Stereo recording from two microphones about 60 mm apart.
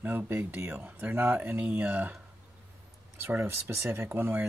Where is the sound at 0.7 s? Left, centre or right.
Right.